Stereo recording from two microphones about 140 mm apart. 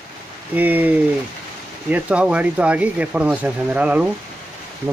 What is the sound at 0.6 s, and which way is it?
Speech, 10° right (ahead or behind).